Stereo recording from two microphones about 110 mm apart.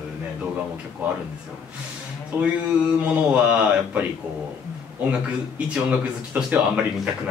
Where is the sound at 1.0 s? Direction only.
15° right (ahead or behind).